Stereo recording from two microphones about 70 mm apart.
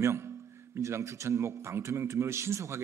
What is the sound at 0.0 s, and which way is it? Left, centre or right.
A man's voice, right.